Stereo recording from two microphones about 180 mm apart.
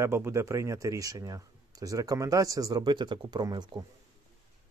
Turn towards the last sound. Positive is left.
turn(degrees=-20)  # may be behind; listen again after turning